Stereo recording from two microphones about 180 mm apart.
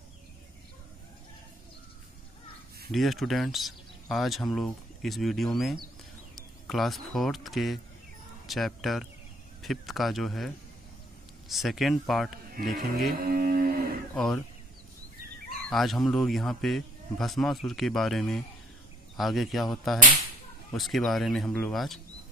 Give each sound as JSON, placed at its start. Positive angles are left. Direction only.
{"t": 2.9, "sound": "speech", "side_deg": 0}
{"t": 12.6, "sound": "speech", "side_deg": -55}
{"t": 13.2, "sound": "a sound", "side_deg": -55}
{"t": 14.1, "sound": "speech", "side_deg": 5}
{"t": 15.7, "sound": "speech", "side_deg": 0}